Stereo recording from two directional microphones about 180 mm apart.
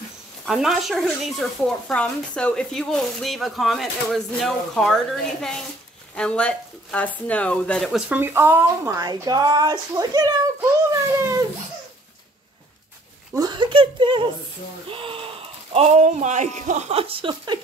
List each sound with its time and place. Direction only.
0.5 s speech: centre (ahead or behind)
8.1 s speech: 10° right (ahead or behind)
13.3 s speech: 20° right (ahead or behind)